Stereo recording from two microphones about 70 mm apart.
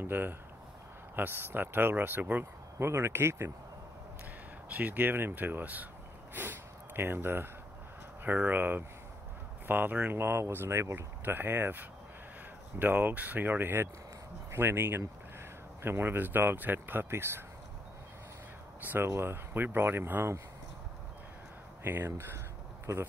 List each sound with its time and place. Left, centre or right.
0.0 s speech: right
2.8 s speech: right
4.6 s speech: right
18.8 s speech: right
21.8 s speech: right